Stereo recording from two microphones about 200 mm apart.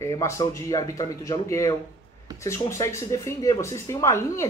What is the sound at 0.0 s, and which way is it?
Speech, 15° left (ahead or behind).